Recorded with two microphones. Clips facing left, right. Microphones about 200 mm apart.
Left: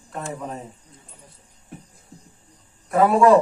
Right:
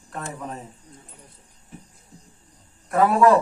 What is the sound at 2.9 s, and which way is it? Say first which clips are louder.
Speech: left 2 dB; centre (ahead or behind).